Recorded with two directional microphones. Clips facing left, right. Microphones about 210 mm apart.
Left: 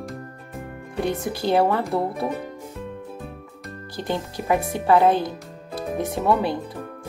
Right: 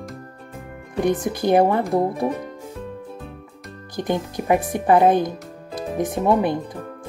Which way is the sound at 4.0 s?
15° right (ahead or behind).